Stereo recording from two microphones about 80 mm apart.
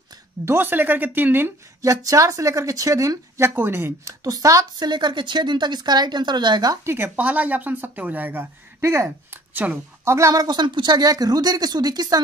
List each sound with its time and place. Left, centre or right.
0.5 s speech: right
1.8 s speech: right
4.8 s speech: right
6.9 s speech: right
8.8 s speech: right
9.5 s a woman's voice: right
10.0 s speech: right